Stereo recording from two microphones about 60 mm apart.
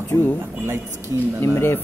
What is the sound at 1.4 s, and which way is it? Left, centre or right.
Speech, left.